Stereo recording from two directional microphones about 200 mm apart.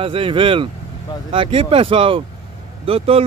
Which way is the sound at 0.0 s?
25° right (ahead or behind).